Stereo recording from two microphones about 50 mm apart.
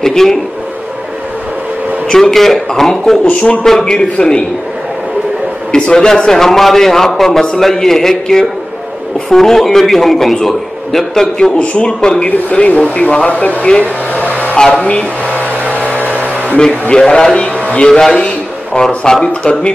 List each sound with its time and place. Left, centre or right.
0.0 s a sound: centre
2.0 s a man's voice: centre
5.7 s a man's voice: centre
11.5 s speech: left
12.3 s speech: left
14.1 s a sound: left
14.5 s speech: left
15.7 s a sound: left
17.1 s a man's voice: centre